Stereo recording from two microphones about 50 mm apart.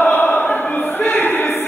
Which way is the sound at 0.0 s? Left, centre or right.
Left.